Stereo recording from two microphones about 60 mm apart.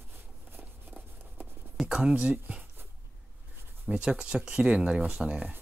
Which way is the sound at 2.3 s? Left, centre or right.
Right.